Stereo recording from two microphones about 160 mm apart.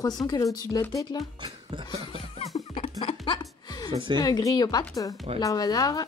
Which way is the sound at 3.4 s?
25° left (ahead or behind).